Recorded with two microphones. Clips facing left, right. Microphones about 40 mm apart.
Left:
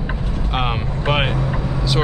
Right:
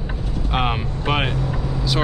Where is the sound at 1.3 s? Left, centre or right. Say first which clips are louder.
Left 3 dB; left.